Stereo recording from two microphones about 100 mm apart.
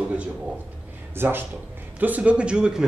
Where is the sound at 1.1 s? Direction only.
20° right (ahead or behind).